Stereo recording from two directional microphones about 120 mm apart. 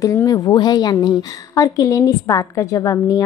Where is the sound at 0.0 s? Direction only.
30° left (ahead or behind).